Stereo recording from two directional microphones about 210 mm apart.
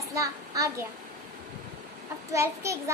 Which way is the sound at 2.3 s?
15° right (ahead or behind).